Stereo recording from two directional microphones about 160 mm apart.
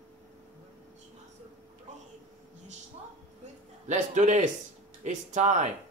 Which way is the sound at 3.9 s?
50° right (ahead or behind).